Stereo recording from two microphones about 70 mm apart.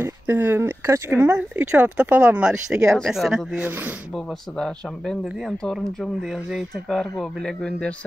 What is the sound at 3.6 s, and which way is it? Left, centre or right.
Speech, right.